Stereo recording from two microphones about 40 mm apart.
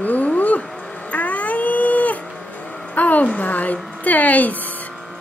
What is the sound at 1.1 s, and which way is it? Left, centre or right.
Dog, left.